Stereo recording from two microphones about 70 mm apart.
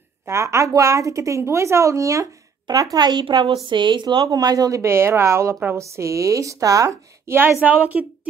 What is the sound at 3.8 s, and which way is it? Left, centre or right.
Speech, right.